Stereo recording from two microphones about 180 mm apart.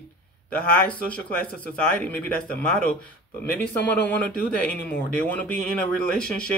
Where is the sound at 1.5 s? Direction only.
10° left (ahead or behind).